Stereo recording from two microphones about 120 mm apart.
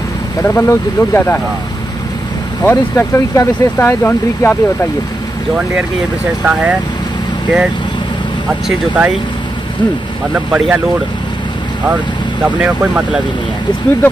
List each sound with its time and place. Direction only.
0.4 s speech: 20° left (ahead or behind)
2.6 s speech: 15° left (ahead or behind)
6.4 s speech: 10° right (ahead or behind)
8.6 s speech: 10° right (ahead or behind)
10.3 s speech: 5° right (ahead or behind)
12.4 s speech: 10° right (ahead or behind)